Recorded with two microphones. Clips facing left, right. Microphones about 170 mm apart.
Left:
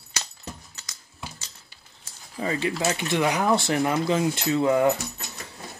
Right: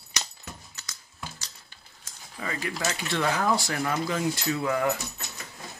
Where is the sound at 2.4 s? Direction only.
25° left (ahead or behind).